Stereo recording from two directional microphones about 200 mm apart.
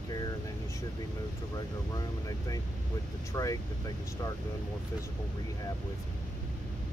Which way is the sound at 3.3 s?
15° left (ahead or behind).